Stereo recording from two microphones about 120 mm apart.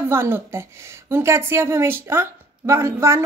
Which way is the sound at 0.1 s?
20° right (ahead or behind).